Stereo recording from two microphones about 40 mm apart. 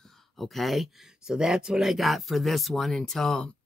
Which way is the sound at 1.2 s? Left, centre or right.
Centre.